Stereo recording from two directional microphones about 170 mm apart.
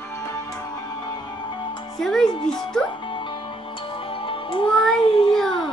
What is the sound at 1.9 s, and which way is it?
Speech, 5° left (ahead or behind).